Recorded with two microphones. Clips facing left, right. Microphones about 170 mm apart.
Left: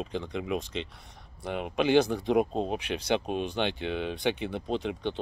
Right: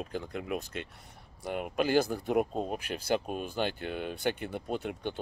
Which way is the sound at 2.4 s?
25° left (ahead or behind).